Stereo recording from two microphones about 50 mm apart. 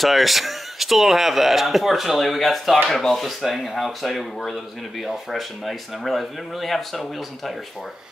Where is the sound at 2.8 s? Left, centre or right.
Centre.